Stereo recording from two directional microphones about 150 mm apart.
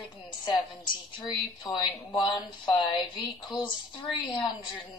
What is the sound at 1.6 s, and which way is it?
A woman's voice, 30° left (ahead or behind).